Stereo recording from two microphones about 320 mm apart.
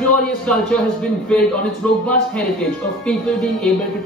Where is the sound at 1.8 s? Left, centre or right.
Centre.